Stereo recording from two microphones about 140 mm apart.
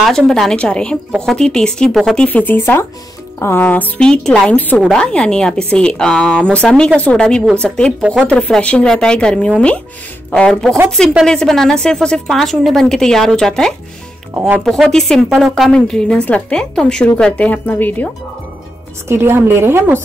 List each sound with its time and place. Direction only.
0.3 s a woman's voice: 5° left (ahead or behind)
14.3 s speech: 10° right (ahead or behind)
14.6 s a woman's voice: centre (ahead or behind)
19.0 s a woman's voice: 20° right (ahead or behind)